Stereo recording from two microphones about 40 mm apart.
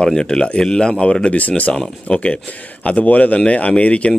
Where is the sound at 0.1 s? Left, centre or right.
Left.